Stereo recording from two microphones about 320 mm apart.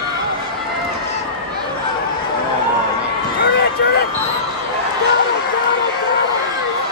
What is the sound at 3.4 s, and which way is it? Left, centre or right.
Run, left.